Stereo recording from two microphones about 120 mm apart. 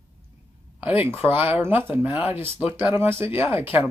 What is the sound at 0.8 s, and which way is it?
Speech, 15° right (ahead or behind).